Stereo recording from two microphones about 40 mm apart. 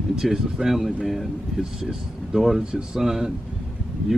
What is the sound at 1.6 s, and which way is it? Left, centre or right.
Speech, centre.